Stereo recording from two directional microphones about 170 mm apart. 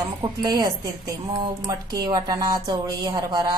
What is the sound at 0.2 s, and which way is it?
A woman's voice, 20° right (ahead or behind).